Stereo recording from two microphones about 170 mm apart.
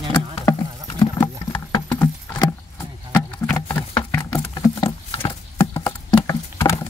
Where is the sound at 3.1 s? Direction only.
15° left (ahead or behind).